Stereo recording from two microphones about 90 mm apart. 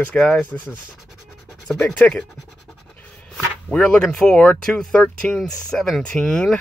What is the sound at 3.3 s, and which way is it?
Speech, 5° left (ahead or behind).